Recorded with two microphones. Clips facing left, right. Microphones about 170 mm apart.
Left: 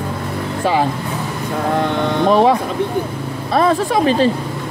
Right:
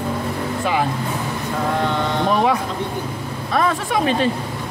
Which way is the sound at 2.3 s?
35° left (ahead or behind).